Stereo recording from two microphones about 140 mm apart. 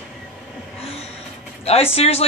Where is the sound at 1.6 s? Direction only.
45° left (ahead or behind).